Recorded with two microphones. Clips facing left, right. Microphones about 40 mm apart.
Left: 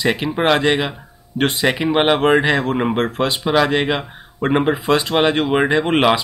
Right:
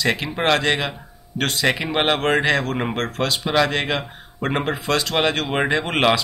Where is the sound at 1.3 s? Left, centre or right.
Left.